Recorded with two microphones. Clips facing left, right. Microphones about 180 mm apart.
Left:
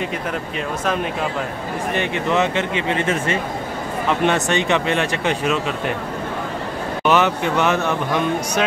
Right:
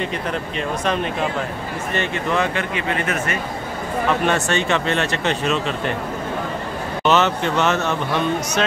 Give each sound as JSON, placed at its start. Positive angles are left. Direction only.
{"t": 2.0, "sound": "speech", "side_deg": 20}
{"t": 7.1, "sound": "speech", "side_deg": 10}